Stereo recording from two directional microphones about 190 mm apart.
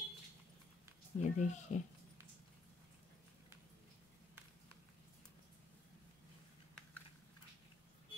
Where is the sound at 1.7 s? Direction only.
40° left (ahead or behind).